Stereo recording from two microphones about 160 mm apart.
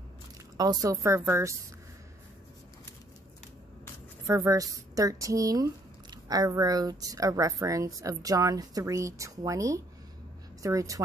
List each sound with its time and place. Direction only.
0.6 s speech: 25° right (ahead or behind)
4.3 s speech: 20° right (ahead or behind)